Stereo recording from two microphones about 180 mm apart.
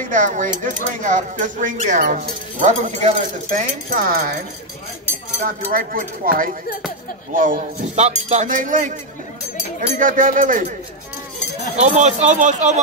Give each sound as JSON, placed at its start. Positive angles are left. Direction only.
{"t": 0.1, "sound": "speech", "side_deg": -45}
{"t": 5.7, "sound": "speech", "side_deg": -50}
{"t": 11.8, "sound": "speech", "side_deg": -40}